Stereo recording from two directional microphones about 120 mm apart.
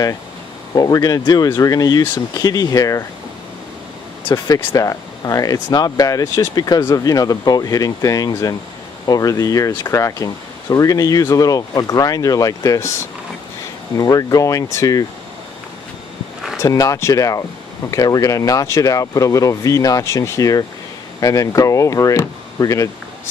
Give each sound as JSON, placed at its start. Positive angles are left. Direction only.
{"t": 0.7, "sound": "speech", "side_deg": 30}
{"t": 4.3, "sound": "speech", "side_deg": 30}
{"t": 16.5, "sound": "speech", "side_deg": 30}